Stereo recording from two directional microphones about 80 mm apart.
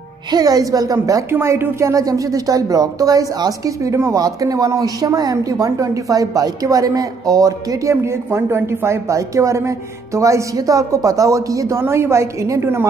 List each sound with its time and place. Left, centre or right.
0.3 s a woman's voice: right
1.3 s a woman's voice: right
4.2 s a woman's voice: right